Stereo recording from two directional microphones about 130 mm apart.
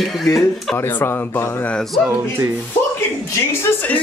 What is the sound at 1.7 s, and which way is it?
Speech, 5° left (ahead or behind).